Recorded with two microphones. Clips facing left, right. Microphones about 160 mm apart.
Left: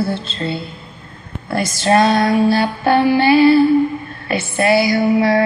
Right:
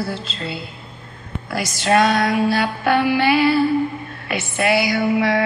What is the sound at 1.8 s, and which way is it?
Female singing, 30° left (ahead or behind).